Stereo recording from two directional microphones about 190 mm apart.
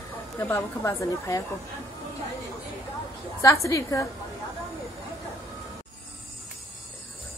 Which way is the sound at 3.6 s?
15° left (ahead or behind).